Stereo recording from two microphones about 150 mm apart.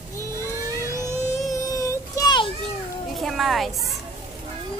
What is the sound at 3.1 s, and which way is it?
Speech, centre (ahead or behind).